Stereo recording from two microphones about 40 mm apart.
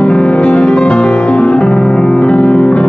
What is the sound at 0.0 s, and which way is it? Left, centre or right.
Music, left.